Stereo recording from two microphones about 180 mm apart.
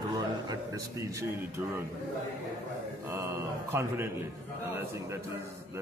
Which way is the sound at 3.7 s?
15° right (ahead or behind).